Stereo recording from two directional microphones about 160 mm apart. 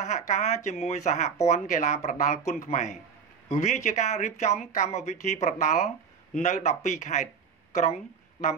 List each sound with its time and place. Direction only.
0.0 s speech: 50° left (ahead or behind)